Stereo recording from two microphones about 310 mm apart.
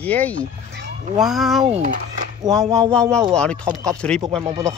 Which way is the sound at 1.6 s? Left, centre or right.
Right.